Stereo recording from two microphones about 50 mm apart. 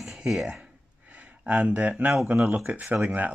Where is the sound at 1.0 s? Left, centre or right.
Right.